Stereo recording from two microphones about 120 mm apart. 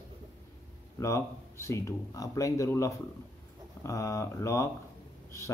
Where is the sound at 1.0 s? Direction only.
25° left (ahead or behind).